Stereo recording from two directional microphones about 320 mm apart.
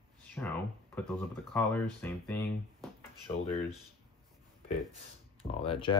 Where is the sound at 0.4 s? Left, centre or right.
Centre.